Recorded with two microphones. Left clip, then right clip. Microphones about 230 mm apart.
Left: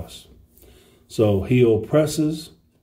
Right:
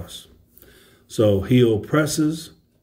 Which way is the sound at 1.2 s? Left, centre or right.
Left.